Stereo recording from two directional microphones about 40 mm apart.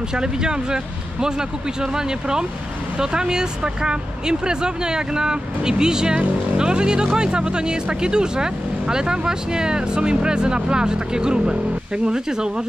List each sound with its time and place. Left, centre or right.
0.1 s speech: centre
1.8 s speech: centre